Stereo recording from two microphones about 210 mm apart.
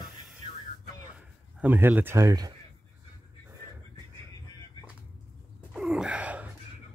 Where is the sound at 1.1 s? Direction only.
5° right (ahead or behind).